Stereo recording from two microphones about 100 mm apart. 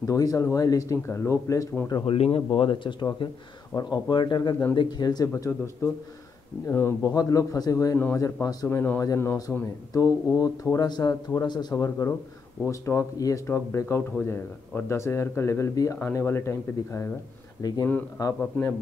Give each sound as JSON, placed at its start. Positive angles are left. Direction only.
{"t": 0.0, "sound": "speech", "side_deg": 35}
{"t": 2.0, "sound": "speech", "side_deg": 80}
{"t": 5.8, "sound": "speech", "side_deg": 25}
{"t": 7.0, "sound": "speech", "side_deg": 40}
{"t": 8.6, "sound": "speech", "side_deg": 20}
{"t": 10.0, "sound": "speech", "side_deg": 35}
{"t": 12.6, "sound": "speech", "side_deg": 30}
{"t": 16.0, "sound": "speech", "side_deg": 20}
{"t": 17.6, "sound": "speech", "side_deg": 40}
{"t": 18.4, "sound": "speech", "side_deg": 20}